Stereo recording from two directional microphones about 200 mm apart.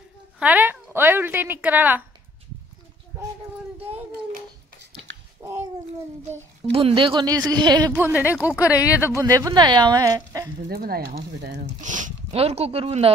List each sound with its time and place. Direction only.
0.4 s a sound: 10° right (ahead or behind)
5.4 s babbling: 20° right (ahead or behind)
6.7 s speech: 30° right (ahead or behind)
7.9 s speech: 10° right (ahead or behind)
8.6 s speech: 15° left (ahead or behind)
9.1 s speech: 15° right (ahead or behind)
10.7 s speech: 50° right (ahead or behind)
11.8 s speech: 40° right (ahead or behind)